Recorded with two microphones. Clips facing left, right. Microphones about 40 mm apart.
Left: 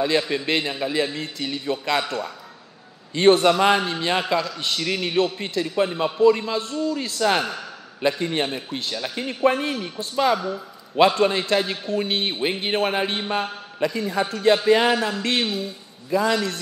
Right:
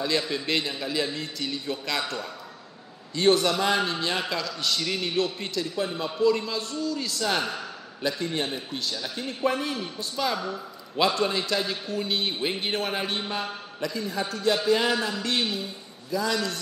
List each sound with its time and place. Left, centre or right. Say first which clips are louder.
0.0 s a man's voice: left 5 dB; left
3.2 s a man's voice: left 6 dB; left